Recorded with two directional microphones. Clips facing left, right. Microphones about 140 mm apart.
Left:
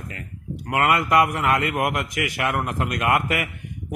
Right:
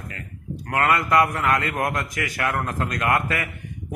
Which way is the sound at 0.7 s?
20° left (ahead or behind).